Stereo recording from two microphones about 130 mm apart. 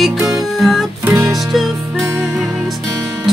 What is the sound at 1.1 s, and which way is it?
Music, 25° right (ahead or behind).